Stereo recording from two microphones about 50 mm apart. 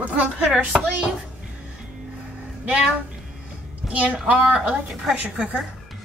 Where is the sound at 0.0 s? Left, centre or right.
Right.